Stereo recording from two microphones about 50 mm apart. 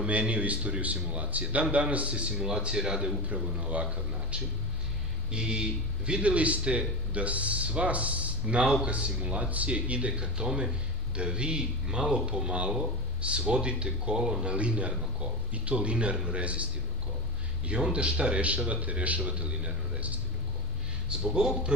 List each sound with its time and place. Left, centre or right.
0.0 s speech: right
17.6 s speech: centre
21.1 s speech: centre